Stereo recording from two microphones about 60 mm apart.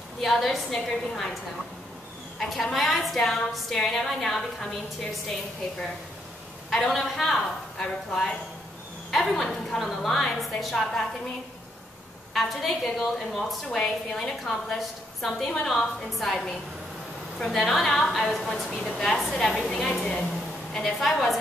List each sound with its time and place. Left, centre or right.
0.2 s a woman's voice: centre
2.3 s a woman's voice: centre
6.7 s a woman's voice: centre
12.4 s a woman's voice: centre
20.0 s a woman's voice: centre
20.7 s a woman's voice: centre